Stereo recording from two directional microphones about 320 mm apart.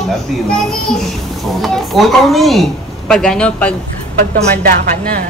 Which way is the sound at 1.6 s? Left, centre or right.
Centre.